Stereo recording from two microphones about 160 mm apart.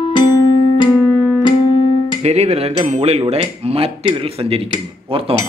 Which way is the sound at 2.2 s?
45° right (ahead or behind).